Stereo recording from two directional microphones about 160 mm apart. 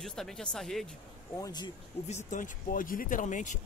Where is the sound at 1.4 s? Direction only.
25° left (ahead or behind).